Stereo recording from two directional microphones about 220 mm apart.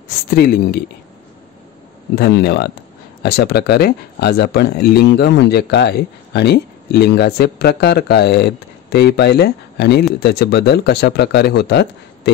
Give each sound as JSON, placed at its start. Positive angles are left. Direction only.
{"t": 0.3, "sound": "speech", "side_deg": 45}
{"t": 2.1, "sound": "speech", "side_deg": 45}